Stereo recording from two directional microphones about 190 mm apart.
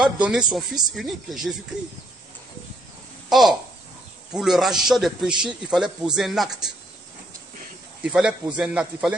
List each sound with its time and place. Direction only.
0.0 s a man's voice: 5° right (ahead or behind)
3.3 s a man's voice: centre (ahead or behind)
8.0 s a man's voice: 5° right (ahead or behind)